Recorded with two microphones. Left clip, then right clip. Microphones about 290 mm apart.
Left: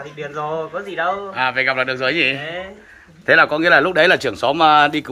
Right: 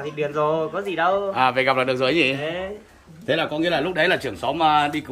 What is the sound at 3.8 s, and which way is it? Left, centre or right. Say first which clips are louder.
Speech: left 6 dB; centre.